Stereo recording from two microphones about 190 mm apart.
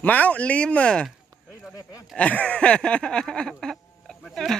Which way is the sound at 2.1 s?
5° left (ahead or behind).